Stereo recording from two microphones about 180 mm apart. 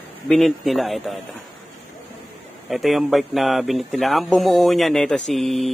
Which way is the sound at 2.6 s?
Centre (ahead or behind).